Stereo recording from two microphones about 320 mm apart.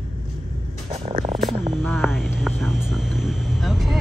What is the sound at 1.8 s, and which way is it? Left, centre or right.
Vehicle, centre.